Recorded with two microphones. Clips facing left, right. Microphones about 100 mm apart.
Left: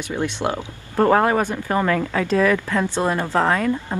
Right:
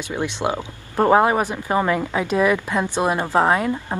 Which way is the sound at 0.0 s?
15° right (ahead or behind).